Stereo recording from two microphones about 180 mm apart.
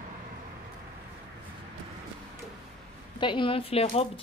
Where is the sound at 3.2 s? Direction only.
25° left (ahead or behind).